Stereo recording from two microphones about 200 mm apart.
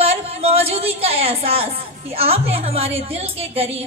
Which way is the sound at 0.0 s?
30° right (ahead or behind).